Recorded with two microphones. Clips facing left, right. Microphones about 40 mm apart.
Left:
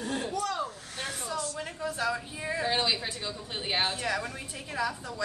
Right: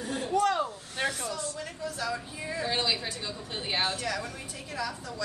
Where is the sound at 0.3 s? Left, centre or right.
Right.